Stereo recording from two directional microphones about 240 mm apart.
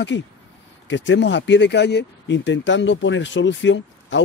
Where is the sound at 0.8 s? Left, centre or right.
Left.